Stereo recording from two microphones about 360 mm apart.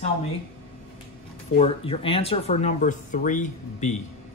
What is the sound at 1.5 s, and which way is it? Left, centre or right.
Speech, centre.